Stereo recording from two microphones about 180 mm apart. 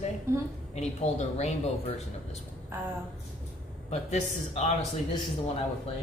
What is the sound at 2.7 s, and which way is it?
Speech, 15° right (ahead or behind).